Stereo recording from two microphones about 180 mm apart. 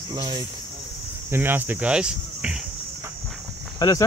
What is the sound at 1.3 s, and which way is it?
Speech, 10° right (ahead or behind).